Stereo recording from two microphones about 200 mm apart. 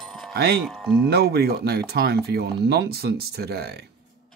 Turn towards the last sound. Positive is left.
turn(degrees=-55)  # may be behind; listen again after turning